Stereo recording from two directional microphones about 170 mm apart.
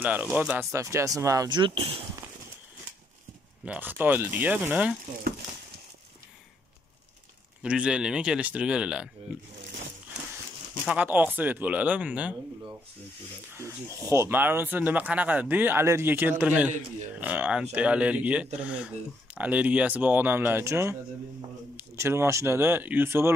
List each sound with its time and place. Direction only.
0.0 s speech: 10° right (ahead or behind); by 2.0 s 30° right (ahead or behind)
3.6 s speech: 10° right (ahead or behind)
7.6 s speech: 5° right (ahead or behind)
10.9 s speech: 10° right (ahead or behind)
13.6 s speech: 15° right (ahead or behind)